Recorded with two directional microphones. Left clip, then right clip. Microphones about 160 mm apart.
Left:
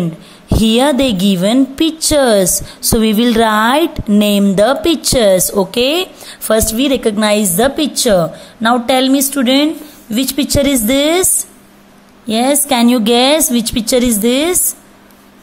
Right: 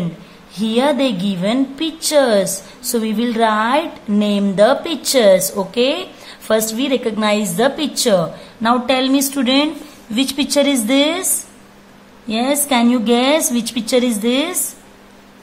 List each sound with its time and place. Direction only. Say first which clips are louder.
0.6 s a woman's voice: left 4 dB; 45° left (ahead or behind)
12.3 s a woman's voice: left 4 dB; 35° left (ahead or behind)